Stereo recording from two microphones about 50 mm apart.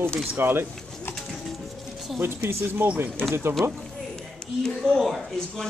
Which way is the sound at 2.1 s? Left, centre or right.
Right.